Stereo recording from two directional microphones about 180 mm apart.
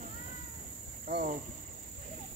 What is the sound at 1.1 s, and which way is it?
Cricket, 35° right (ahead or behind).